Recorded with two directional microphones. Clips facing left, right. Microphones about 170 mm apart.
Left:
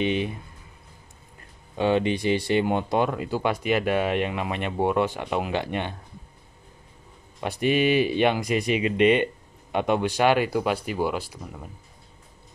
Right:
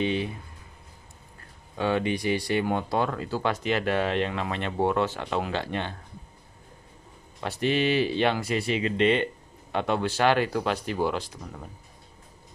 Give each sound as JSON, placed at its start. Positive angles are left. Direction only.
{"t": 0.0, "sound": "speech", "side_deg": 20}
{"t": 1.8, "sound": "speech", "side_deg": 20}
{"t": 7.3, "sound": "speech", "side_deg": 15}